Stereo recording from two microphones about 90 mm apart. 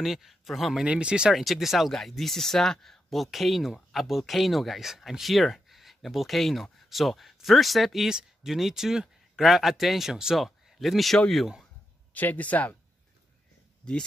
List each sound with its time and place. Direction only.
0.0 s speech: 5° right (ahead or behind)
12.1 s speech: 20° left (ahead or behind)